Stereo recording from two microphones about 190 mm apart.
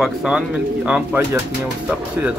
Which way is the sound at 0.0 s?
5° right (ahead or behind).